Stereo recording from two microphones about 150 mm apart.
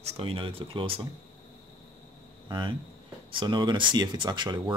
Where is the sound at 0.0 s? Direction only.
35° right (ahead or behind).